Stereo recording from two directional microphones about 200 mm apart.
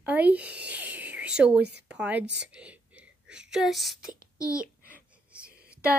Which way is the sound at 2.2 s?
60° right (ahead or behind).